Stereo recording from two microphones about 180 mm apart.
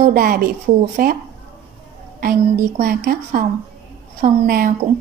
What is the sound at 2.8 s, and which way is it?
A woman's voice, 55° right (ahead or behind).